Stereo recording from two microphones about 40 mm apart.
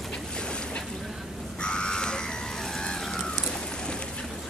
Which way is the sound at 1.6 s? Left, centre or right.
Left.